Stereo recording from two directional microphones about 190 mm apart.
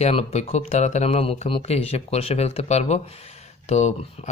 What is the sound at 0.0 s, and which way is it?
Speech, 35° left (ahead or behind).